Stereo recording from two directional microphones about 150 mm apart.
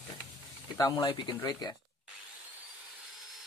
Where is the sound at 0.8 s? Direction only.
25° left (ahead or behind).